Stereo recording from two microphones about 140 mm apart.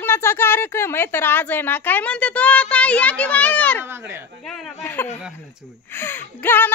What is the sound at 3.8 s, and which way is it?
Speech, 15° right (ahead or behind).